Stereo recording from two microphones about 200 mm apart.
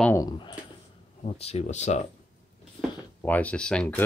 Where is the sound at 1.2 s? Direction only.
30° left (ahead or behind).